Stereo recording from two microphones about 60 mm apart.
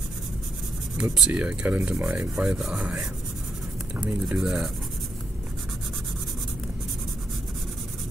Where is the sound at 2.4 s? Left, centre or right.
Centre.